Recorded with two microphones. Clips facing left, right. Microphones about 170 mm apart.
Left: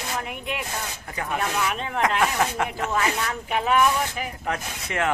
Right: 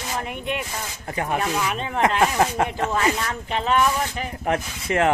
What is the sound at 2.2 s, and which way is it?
Speech, 30° right (ahead or behind).